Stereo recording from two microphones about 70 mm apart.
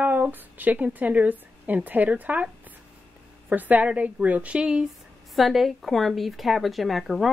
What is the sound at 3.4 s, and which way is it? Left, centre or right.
A woman's voice, right.